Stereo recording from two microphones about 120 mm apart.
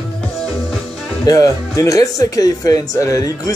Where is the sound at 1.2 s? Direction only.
25° left (ahead or behind).